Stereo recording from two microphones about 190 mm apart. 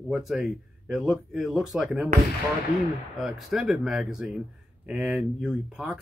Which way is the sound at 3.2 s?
Centre (ahead or behind).